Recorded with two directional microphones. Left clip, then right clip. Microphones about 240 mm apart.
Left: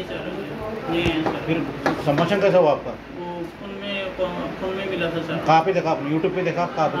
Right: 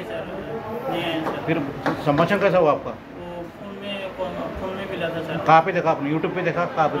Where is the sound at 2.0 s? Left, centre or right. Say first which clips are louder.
Right 1 dB; centre.